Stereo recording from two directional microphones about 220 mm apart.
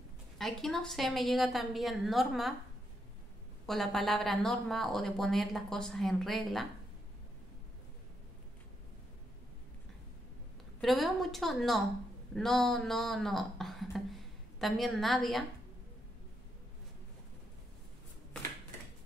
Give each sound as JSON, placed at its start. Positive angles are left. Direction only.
{"t": 0.4, "sound": "speech", "side_deg": 0}
{"t": 3.6, "sound": "speech", "side_deg": 0}
{"t": 10.8, "sound": "speech", "side_deg": 0}